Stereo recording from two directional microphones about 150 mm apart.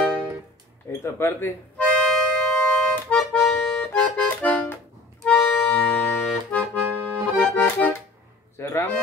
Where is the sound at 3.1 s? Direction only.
5° left (ahead or behind).